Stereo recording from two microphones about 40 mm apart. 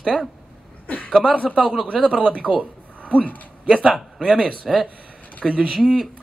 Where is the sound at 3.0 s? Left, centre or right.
Left.